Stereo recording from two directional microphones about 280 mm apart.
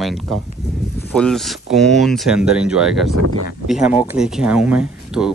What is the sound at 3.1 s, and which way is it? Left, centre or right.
Speech, right.